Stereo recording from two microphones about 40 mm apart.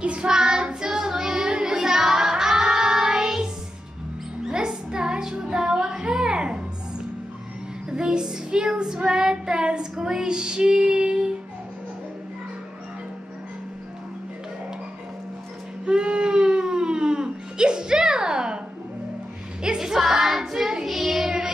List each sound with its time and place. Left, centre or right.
0.0 s child singing: right; by 3.4 s centre
4.5 s music: centre
7.9 s child singing: right
15.8 s baby cry: right
19.6 s child singing: centre